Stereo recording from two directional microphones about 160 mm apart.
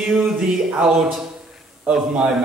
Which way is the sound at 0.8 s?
5° right (ahead or behind).